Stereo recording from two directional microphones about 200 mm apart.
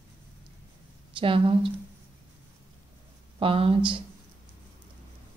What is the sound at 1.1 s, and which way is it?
Speech, 25° right (ahead or behind).